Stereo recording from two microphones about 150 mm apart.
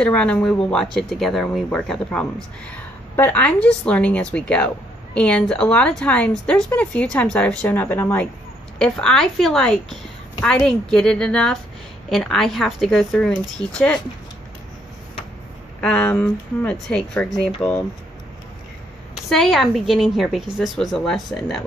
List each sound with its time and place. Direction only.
0.0 s a woman's voice: 10° left (ahead or behind)
15.8 s a woman's voice: 10° left (ahead or behind)
19.2 s a woman's voice: centre (ahead or behind)